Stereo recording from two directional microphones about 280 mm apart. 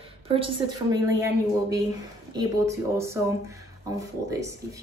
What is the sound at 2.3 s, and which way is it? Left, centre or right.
Speech, centre.